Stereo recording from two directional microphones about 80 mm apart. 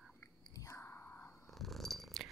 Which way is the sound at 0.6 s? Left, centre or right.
Left.